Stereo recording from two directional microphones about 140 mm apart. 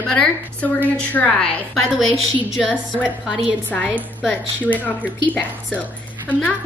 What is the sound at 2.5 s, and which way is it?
Speech, 5° left (ahead or behind).